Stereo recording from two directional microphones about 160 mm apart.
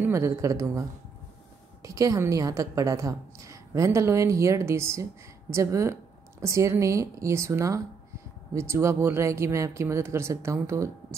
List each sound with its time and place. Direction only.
0.0 s a woman's voice: 15° right (ahead or behind)